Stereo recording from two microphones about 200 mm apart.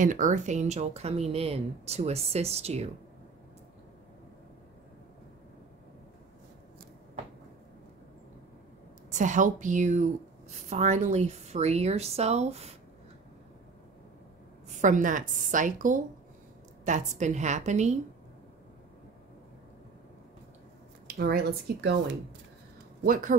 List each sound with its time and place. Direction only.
0.0 s a woman's voice: 40° right (ahead or behind)
9.1 s a woman's voice: 40° right (ahead or behind)
14.8 s a woman's voice: 40° right (ahead or behind)
21.2 s speech: 50° right (ahead or behind)
23.0 s speech: 45° right (ahead or behind)